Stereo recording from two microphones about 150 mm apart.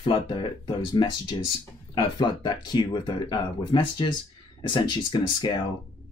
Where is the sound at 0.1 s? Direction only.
30° left (ahead or behind).